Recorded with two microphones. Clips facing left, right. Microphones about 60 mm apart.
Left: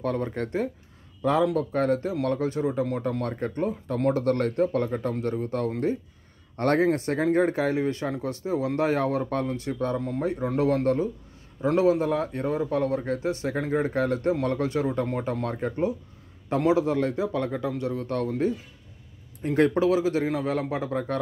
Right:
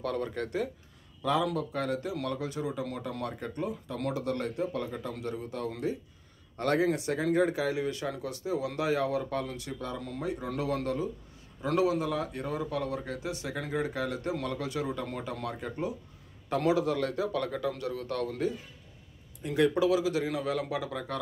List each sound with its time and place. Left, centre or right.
0.0 s speech: left
10.0 s speech: left
19.4 s speech: left